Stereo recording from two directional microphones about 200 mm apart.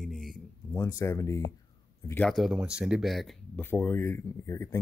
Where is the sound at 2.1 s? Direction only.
5° left (ahead or behind).